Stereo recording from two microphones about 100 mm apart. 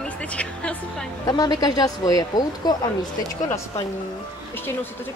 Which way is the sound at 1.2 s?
40° left (ahead or behind).